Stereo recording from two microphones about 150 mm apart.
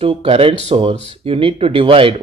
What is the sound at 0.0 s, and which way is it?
Speech, 40° right (ahead or behind).